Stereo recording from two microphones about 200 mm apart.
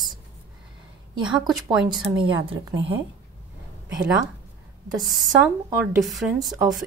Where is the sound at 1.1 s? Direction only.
25° right (ahead or behind).